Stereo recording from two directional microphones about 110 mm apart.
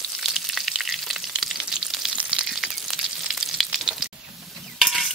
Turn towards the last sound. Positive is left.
turn(degrees=-5)  # may be behind; listen again after turning